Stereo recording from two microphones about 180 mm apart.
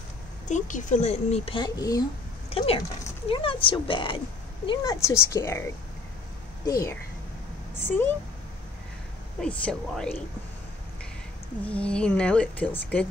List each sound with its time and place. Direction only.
0.5 s speech: 45° left (ahead or behind); by 2.0 s 20° left (ahead or behind)
2.5 s speech: 30° left (ahead or behind)
4.6 s a woman's voice: 15° left (ahead or behind)
9.4 s speech: 5° left (ahead or behind)
11.6 s a woman's voice: 5° left (ahead or behind)